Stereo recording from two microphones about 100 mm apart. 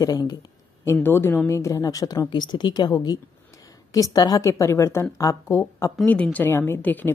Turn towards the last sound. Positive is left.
turn(degrees=20)  # may be behind; listen again after turning